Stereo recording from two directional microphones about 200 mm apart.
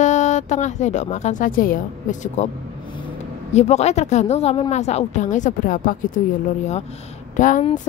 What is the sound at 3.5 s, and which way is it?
Speech, 35° left (ahead or behind).